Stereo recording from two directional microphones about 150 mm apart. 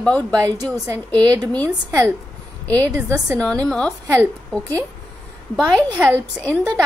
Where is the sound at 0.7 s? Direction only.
25° right (ahead or behind).